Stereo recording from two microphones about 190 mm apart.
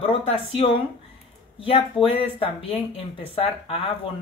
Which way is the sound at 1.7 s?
30° left (ahead or behind).